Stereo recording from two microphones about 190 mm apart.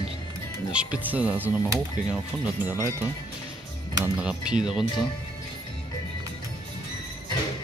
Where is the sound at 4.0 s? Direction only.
5° right (ahead or behind).